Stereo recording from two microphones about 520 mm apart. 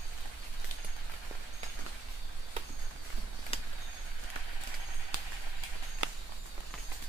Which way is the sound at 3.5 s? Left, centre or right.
Centre.